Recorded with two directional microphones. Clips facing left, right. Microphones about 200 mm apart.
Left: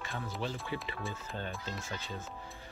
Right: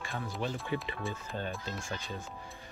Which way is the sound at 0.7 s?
20° right (ahead or behind).